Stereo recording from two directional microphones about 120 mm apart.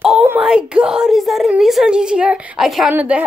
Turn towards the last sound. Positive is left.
turn(degrees=-15)  # may be behind; listen again after turning